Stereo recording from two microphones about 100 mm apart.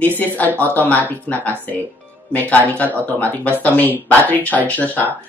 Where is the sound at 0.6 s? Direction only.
15° left (ahead or behind).